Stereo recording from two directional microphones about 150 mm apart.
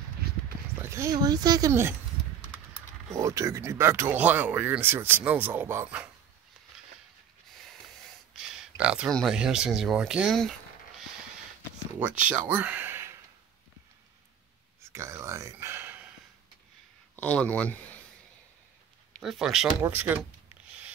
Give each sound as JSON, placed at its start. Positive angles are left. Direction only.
{"t": 0.8, "sound": "speech", "side_deg": -20}
{"t": 3.1, "sound": "speech", "side_deg": -20}
{"t": 8.4, "sound": "a sound", "side_deg": -5}
{"t": 9.1, "sound": "speech", "side_deg": 0}
{"t": 12.0, "sound": "speech", "side_deg": -10}
{"t": 14.8, "sound": "a sound", "side_deg": -15}
{"t": 17.1, "sound": "speech", "side_deg": 10}
{"t": 19.1, "sound": "speech", "side_deg": 0}
{"t": 19.8, "sound": "speech", "side_deg": -15}